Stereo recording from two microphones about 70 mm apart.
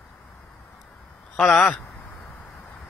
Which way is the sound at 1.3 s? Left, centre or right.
Centre.